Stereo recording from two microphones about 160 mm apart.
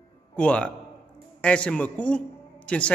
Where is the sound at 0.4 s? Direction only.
10° left (ahead or behind).